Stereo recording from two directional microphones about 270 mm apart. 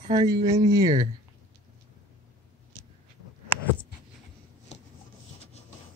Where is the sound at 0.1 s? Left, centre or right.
Centre.